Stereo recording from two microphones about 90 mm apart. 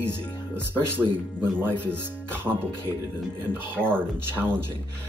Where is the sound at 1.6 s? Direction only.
20° right (ahead or behind).